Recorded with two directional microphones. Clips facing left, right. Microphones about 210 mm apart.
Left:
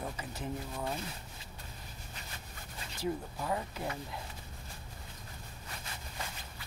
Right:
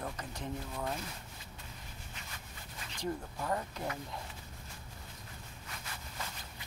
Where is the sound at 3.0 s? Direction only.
5° left (ahead or behind).